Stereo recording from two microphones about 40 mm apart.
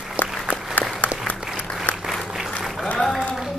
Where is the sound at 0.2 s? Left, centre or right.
Left.